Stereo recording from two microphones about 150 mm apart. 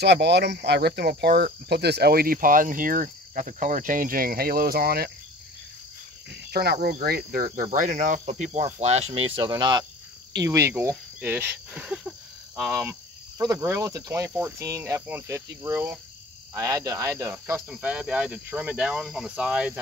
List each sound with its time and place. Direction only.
0.0 s speech: 90° right
6.5 s speech: 90° right; by 7.6 s 70° right (ahead or behind)
7.7 s cricket: 60° right (ahead or behind); by 9.5 s 40° right (ahead or behind)
9.5 s speech: 30° right (ahead or behind)
10.3 s cricket: 20° right (ahead or behind); by 12.7 s centre (ahead or behind)
13.4 s speech: 20° right (ahead or behind)
14.3 s cricket: 10° right (ahead or behind)
16.5 s speech: 20° right (ahead or behind)
17.6 s cricket: 10° right (ahead or behind)